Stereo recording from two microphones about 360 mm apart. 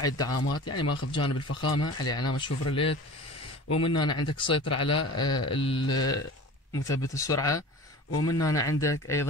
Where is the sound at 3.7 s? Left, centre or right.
Left.